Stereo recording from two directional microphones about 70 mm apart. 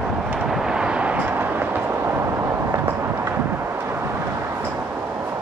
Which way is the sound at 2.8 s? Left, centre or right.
Right.